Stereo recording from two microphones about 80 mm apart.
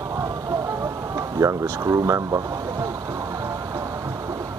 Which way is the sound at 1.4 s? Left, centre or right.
Right.